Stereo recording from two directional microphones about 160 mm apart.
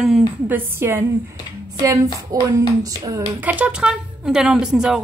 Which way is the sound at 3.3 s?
10° right (ahead or behind).